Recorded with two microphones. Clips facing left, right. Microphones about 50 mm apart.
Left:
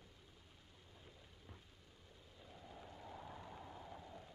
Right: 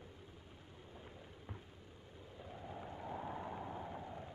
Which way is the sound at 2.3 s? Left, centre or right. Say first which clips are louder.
Right 8 dB; right.